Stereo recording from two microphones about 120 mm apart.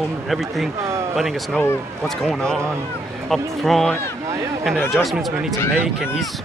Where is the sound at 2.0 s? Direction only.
5° left (ahead or behind).